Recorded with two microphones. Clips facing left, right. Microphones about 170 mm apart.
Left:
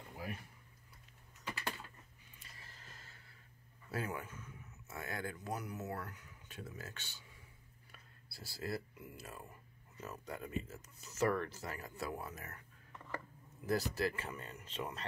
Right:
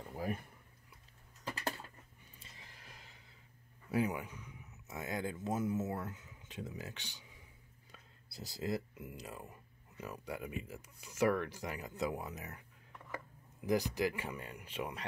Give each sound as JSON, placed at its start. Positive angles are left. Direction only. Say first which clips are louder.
{"t": 0.1, "sound": "speech", "louder": "right 6 dB", "side_deg": -45}
{"t": 2.4, "sound": "a sound", "louder": "right 1 dB", "side_deg": -15}
{"t": 3.9, "sound": "speech", "louder": "right 6 dB", "side_deg": -15}
{"t": 13.7, "sound": "speech", "louder": "right 2 dB", "side_deg": -15}